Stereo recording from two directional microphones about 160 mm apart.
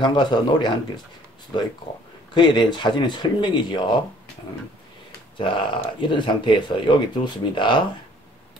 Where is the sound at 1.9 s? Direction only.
30° left (ahead or behind).